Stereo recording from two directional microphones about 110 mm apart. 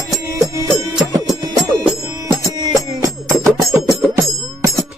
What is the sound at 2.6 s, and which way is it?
Music, 35° right (ahead or behind).